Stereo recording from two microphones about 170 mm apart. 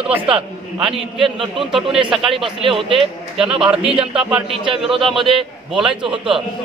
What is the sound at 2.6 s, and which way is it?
Speech, 30° right (ahead or behind).